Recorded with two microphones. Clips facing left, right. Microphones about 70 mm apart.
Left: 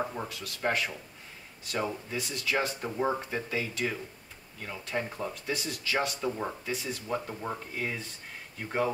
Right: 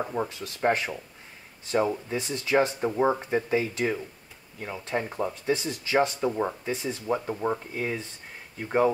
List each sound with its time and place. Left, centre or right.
0.1 s speech: right